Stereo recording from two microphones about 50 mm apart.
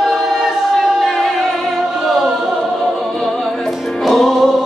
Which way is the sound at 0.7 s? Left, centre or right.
Centre.